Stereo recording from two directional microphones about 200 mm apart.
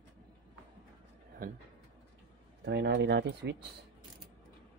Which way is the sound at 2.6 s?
60° right (ahead or behind).